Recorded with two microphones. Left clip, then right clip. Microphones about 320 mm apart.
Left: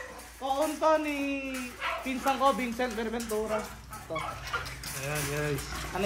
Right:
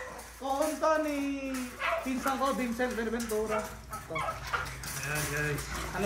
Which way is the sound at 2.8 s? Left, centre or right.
Centre.